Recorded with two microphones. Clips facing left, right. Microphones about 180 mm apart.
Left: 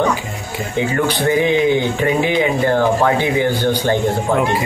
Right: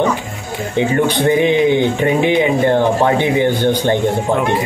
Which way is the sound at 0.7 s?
20° right (ahead or behind).